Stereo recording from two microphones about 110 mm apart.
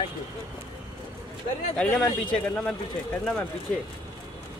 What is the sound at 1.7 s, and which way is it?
Speech, 10° left (ahead or behind).